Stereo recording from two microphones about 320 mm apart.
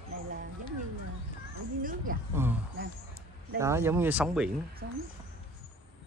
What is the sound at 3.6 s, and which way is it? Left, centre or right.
Speech, centre.